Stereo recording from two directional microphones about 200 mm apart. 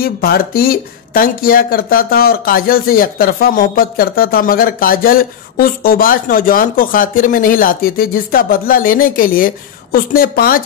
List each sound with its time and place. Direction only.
0.0 s speech: 50° left (ahead or behind)